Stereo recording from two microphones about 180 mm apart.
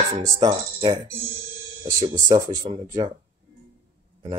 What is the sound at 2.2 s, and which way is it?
Speech, 25° right (ahead or behind).